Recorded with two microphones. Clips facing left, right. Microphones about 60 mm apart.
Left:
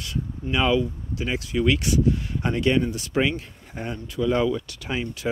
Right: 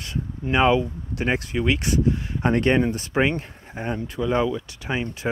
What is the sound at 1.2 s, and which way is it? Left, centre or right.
Speech, right.